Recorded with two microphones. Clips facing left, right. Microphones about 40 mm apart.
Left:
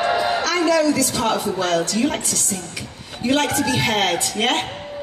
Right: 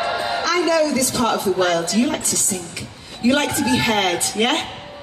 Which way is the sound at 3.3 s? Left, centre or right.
Centre.